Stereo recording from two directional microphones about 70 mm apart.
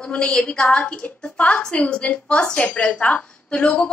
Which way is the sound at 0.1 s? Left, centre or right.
Centre.